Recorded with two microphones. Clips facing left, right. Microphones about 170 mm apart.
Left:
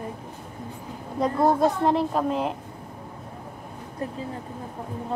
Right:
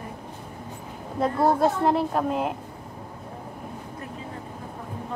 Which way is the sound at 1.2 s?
Centre (ahead or behind).